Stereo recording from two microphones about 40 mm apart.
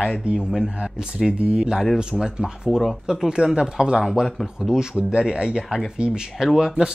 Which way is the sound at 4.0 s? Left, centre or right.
Centre.